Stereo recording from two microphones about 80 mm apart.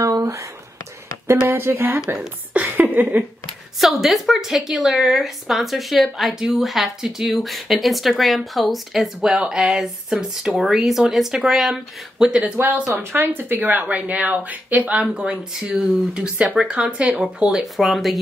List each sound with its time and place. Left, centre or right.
0.0 s a sound: right
1.5 s speech: right
2.5 s a sound: centre
3.8 s a woman's voice: centre
12.9 s speech: right
15.0 s a woman's voice: centre